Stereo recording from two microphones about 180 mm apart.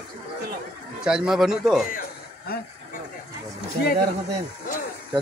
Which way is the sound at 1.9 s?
55° left (ahead or behind).